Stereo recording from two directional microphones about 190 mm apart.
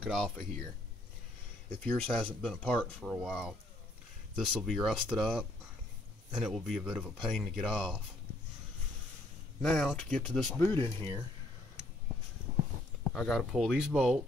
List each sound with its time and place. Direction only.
0.0 s speech: centre (ahead or behind)
1.8 s speech: 5° left (ahead or behind)
9.6 s speech: 5° left (ahead or behind)
13.1 s speech: centre (ahead or behind)